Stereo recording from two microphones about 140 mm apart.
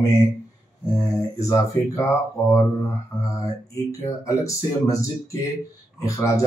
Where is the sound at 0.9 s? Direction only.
25° left (ahead or behind).